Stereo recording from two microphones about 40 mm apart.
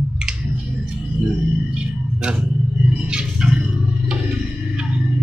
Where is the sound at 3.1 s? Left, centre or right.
Centre.